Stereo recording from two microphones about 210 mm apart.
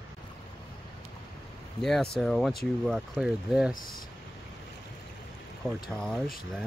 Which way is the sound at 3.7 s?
45° left (ahead or behind).